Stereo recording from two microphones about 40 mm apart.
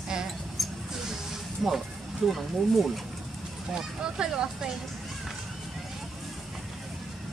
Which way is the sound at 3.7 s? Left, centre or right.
Right.